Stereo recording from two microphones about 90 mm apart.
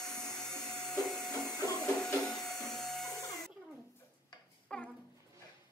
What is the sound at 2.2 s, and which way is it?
Vacuum cleaner, 5° left (ahead or behind).